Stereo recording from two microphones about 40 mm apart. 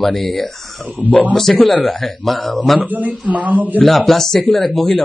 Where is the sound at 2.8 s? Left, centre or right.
Right.